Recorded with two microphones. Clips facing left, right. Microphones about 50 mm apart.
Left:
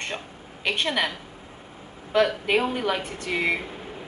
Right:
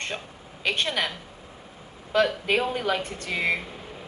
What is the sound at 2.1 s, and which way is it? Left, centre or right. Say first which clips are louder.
Speech: left 1 dB; centre.